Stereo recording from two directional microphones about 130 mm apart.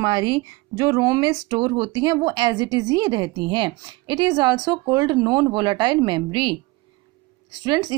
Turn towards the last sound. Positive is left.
turn(degrees=-30)  # may be behind; listen again after turning